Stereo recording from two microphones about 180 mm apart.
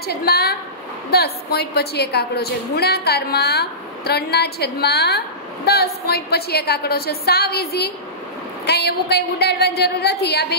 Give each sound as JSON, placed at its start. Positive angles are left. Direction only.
{"t": 0.0, "sound": "a woman's voice", "side_deg": 60}